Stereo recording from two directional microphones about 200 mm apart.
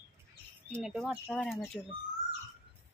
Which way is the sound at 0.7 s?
5° right (ahead or behind).